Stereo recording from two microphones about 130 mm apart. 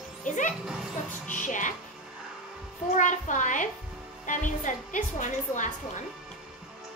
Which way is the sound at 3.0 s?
75° left (ahead or behind).